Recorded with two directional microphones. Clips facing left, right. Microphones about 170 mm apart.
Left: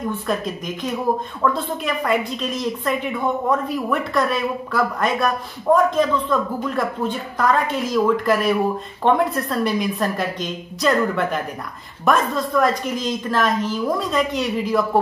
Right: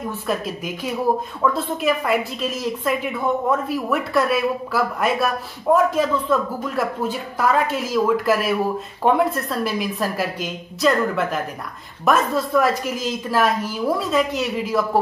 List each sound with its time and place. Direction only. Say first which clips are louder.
0.3 s a woman's voice: right 2 dB; 5° right (ahead or behind)